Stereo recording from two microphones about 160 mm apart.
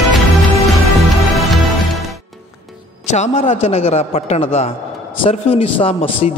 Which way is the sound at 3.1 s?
45° left (ahead or behind).